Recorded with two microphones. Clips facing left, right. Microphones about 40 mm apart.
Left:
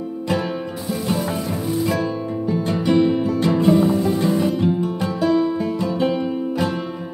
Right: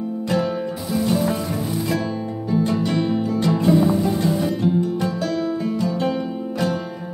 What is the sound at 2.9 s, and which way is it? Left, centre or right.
Music, centre.